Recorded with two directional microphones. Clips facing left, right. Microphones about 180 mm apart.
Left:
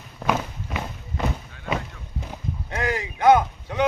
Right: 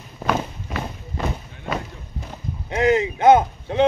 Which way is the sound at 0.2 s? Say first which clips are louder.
Right 1 dB; 5° right (ahead or behind).